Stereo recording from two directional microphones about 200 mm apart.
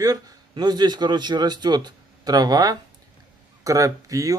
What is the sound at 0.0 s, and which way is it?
Speech, 20° right (ahead or behind).